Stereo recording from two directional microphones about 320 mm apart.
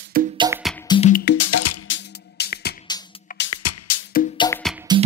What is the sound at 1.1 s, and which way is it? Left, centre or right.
Music, left.